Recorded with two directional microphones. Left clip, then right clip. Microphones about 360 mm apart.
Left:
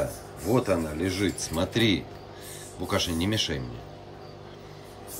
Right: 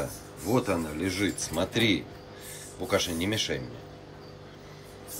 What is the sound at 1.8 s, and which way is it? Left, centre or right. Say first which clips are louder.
Speech: left 1 dB; left.